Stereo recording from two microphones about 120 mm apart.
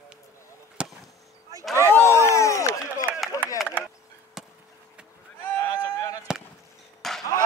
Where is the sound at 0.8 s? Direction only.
10° right (ahead or behind).